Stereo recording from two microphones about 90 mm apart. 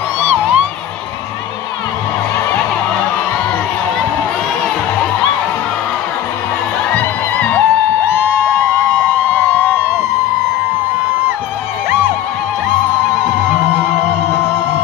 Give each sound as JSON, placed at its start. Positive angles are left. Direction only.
{"t": 0.3, "sound": "music", "side_deg": -10}
{"t": 6.9, "sound": "music", "side_deg": 15}
{"t": 9.3, "sound": "a sound", "side_deg": 20}